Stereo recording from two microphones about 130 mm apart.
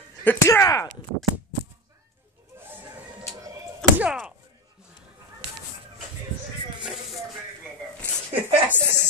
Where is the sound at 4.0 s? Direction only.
5° right (ahead or behind).